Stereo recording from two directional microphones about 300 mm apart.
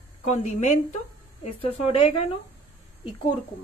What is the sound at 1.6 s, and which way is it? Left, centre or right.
Speech, centre.